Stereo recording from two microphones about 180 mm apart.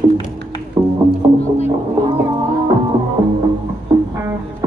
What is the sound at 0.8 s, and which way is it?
Music, 20° right (ahead or behind).